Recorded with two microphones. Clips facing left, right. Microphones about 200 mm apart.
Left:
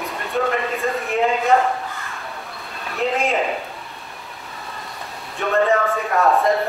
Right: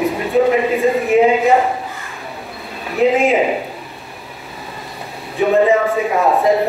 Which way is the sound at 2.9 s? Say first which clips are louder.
Right 8 dB; centre (ahead or behind).